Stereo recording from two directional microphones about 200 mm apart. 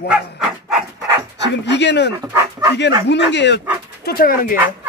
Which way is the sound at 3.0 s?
60° left (ahead or behind).